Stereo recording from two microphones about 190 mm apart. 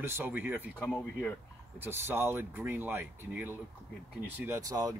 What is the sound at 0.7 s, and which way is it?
Speech, 10° left (ahead or behind).